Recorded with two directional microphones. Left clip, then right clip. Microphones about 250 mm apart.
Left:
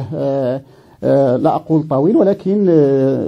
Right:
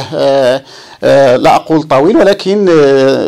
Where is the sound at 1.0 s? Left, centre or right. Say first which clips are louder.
Right 7 dB; right.